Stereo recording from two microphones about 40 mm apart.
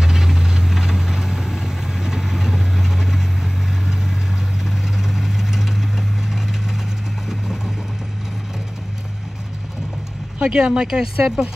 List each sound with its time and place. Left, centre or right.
0.0 s vehicle: centre
10.4 s speech: centre